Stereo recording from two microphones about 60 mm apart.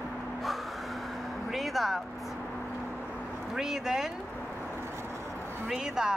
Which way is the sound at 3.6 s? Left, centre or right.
Centre.